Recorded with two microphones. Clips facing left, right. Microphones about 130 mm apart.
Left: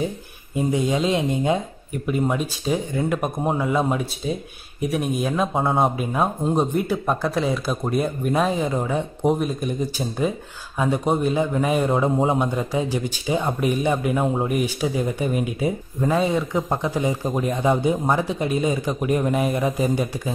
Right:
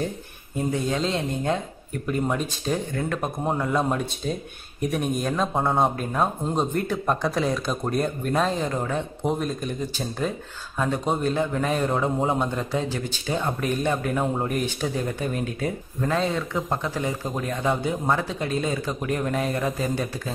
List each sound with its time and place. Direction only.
0.6 s speech: 15° left (ahead or behind)